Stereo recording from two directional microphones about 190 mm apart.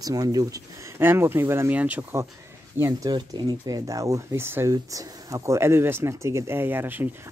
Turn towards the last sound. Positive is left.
turn(degrees=-10)  # may be behind; listen again after turning